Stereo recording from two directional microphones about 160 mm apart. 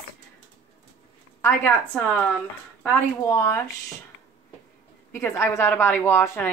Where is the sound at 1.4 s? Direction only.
15° left (ahead or behind).